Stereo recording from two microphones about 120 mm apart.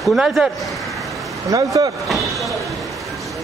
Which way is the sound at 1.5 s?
30° right (ahead or behind).